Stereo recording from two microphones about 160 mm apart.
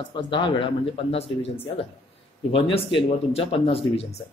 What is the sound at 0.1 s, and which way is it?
Speech, 30° left (ahead or behind).